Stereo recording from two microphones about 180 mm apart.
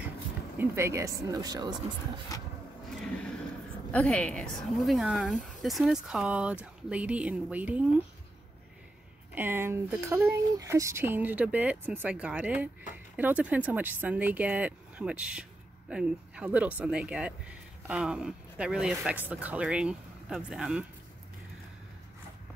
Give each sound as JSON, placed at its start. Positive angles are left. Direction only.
{"t": 0.6, "sound": "speech", "side_deg": -15}
{"t": 3.0, "sound": "a sound", "side_deg": 5}
{"t": 3.9, "sound": "speech", "side_deg": 5}
{"t": 9.3, "sound": "speech", "side_deg": -10}